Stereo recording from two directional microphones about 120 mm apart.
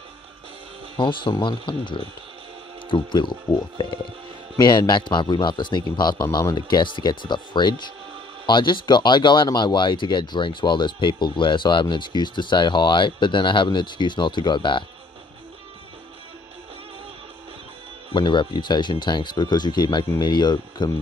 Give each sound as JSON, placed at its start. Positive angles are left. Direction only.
{"t": 0.9, "sound": "speech", "side_deg": 45}
{"t": 18.1, "sound": "speech", "side_deg": 40}